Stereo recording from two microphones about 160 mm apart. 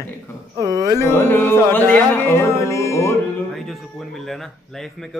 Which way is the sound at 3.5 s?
Centre (ahead or behind).